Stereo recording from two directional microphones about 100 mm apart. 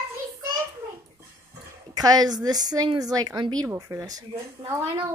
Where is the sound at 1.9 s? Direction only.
40° right (ahead or behind).